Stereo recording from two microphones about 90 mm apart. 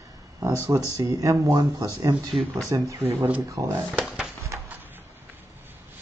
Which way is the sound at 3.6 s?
25° right (ahead or behind).